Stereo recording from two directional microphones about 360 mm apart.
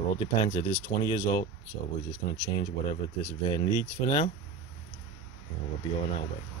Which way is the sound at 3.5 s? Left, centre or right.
Centre.